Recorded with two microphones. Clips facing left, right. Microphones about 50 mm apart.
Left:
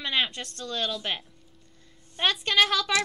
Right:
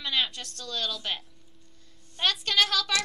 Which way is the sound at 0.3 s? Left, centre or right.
Left.